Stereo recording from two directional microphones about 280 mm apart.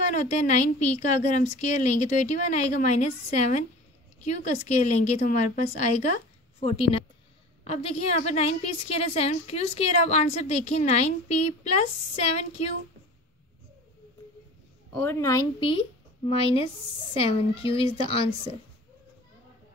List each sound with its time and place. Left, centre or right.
0.1 s a woman's voice: left
14.9 s a woman's voice: centre